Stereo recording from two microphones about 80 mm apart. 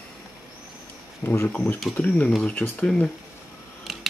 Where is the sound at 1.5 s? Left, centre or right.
Left.